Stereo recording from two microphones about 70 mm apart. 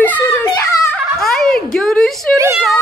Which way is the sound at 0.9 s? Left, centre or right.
Centre.